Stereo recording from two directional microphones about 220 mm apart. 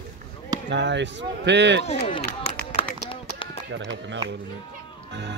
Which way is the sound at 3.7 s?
55° right (ahead or behind).